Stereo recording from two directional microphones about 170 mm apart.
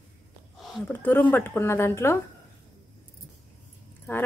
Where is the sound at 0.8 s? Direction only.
10° left (ahead or behind).